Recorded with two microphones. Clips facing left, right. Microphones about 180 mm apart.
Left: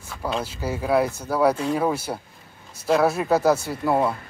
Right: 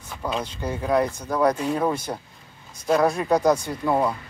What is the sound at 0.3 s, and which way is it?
Speech, 5° left (ahead or behind).